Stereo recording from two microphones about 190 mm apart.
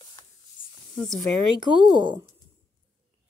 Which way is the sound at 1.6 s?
25° right (ahead or behind).